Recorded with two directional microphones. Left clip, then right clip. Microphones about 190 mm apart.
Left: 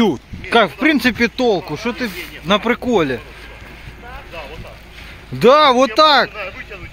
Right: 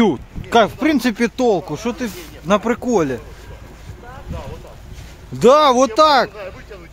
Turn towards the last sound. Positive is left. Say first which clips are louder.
# left 1 dB
turn(degrees=0)  # may be behind; listen again after turning